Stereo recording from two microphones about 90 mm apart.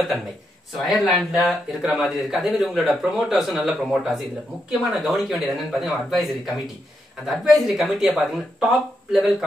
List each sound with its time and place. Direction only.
1.1 s speech: centre (ahead or behind)